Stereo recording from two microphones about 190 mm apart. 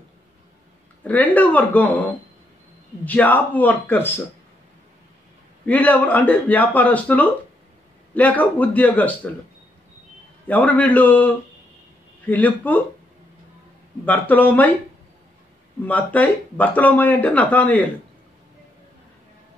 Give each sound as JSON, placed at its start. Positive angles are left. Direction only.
{"t": 1.0, "sound": "speech", "side_deg": 10}
{"t": 5.7, "sound": "speech", "side_deg": 10}
{"t": 10.4, "sound": "speech", "side_deg": 10}
{"t": 14.0, "sound": "speech", "side_deg": 10}
{"t": 15.8, "sound": "speech", "side_deg": 10}